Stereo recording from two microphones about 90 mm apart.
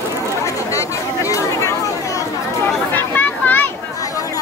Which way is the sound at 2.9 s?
20° left (ahead or behind).